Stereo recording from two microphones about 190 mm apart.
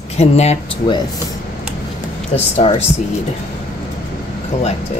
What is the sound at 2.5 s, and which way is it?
Speech, 35° left (ahead or behind).